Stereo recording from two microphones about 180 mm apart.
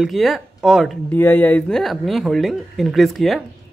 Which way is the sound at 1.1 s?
10° left (ahead or behind).